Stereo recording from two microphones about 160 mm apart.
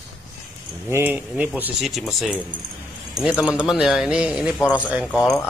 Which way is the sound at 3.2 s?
5° right (ahead or behind).